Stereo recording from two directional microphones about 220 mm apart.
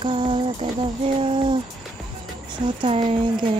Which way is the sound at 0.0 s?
20° right (ahead or behind).